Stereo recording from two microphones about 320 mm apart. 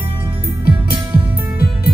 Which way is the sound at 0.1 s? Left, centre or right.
Centre.